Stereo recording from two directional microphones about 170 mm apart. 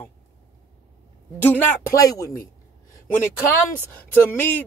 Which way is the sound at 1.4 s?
10° left (ahead or behind).